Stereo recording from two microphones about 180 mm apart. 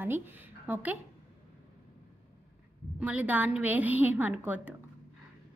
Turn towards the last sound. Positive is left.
turn(degrees=-10)  # may be behind; listen again after turning